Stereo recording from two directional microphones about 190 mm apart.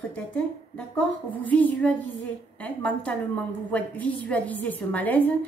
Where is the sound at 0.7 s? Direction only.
5° left (ahead or behind).